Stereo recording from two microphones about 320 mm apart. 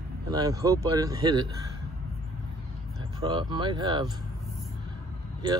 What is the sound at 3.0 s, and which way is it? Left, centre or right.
Speech, centre.